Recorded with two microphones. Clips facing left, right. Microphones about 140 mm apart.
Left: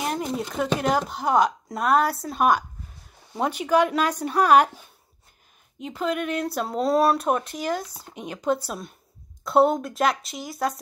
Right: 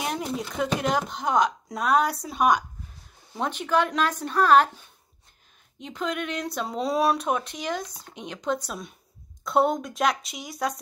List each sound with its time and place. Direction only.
0.0 s speech: centre (ahead or behind)
5.8 s speech: 5° left (ahead or behind)